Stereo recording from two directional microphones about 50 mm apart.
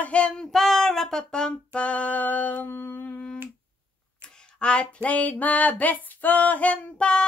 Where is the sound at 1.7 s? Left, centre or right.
Left.